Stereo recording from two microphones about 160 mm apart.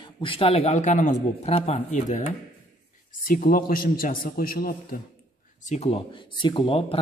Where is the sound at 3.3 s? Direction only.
60° left (ahead or behind).